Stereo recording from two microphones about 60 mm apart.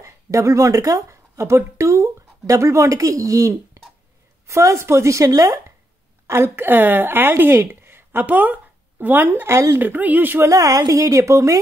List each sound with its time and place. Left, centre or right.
0.0 s speech: right
6.2 s speech: right
10.4 s speech: right